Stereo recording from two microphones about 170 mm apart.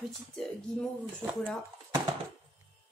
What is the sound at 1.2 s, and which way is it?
Speech, 20° right (ahead or behind).